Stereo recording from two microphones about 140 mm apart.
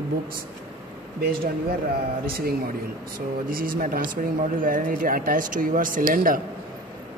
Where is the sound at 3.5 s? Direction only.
90° right.